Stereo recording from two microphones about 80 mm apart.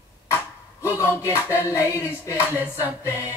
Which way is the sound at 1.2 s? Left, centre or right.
Left.